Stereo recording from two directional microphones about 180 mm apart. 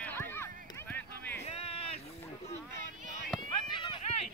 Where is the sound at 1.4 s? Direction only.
35° left (ahead or behind).